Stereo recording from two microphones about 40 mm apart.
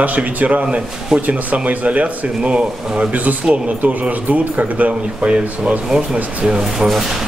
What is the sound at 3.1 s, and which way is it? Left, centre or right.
A man's voice, right.